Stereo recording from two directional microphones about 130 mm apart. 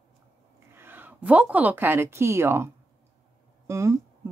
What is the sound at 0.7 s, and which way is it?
A woman's voice, 15° right (ahead or behind).